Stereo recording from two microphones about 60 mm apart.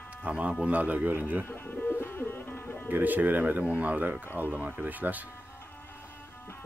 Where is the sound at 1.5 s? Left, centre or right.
Left.